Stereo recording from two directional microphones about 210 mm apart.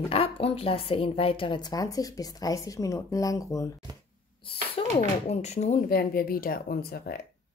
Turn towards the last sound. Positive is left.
turn(degrees=50)  # may be behind; listen again after turning